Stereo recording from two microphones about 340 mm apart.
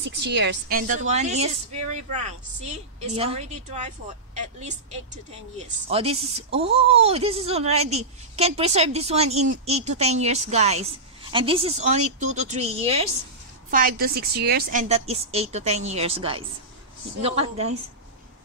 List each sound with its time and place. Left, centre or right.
0.0 s a woman's voice: right